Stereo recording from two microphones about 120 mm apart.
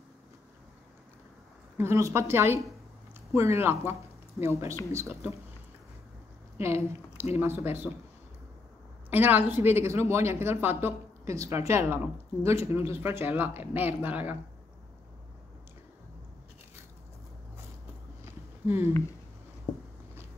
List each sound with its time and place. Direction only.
1.8 s speech: 25° right (ahead or behind)
6.6 s speech: 20° right (ahead or behind)
9.1 s speech: 15° right (ahead or behind)
18.2 s a sound: 20° right (ahead or behind)